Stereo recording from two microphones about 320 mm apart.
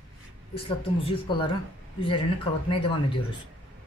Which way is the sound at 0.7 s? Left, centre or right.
Centre.